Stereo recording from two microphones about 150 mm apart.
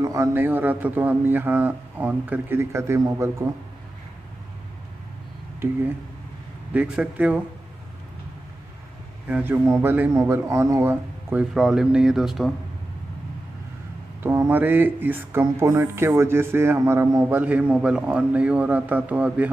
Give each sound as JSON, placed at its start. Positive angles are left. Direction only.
{"t": 0.0, "sound": "speech", "side_deg": -20}
{"t": 6.7, "sound": "speech", "side_deg": -10}
{"t": 9.3, "sound": "speech", "side_deg": -15}
{"t": 14.2, "sound": "speech", "side_deg": -15}